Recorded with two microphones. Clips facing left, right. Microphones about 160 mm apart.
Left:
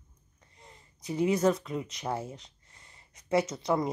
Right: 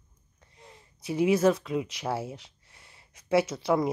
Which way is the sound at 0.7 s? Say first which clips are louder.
Right 3 dB; 75° right (ahead or behind).